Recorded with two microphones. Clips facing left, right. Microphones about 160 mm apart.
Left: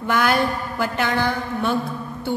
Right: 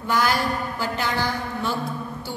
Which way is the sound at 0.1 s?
60° left (ahead or behind).